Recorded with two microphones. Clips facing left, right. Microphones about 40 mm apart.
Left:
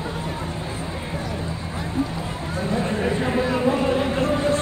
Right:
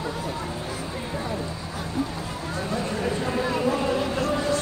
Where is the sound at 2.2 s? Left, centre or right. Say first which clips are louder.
Left 3 dB; left.